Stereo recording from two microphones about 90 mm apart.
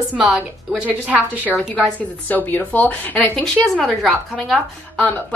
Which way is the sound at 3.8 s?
Centre (ahead or behind).